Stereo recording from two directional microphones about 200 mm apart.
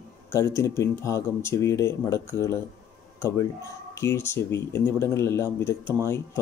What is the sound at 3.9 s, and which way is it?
Speech, 15° left (ahead or behind).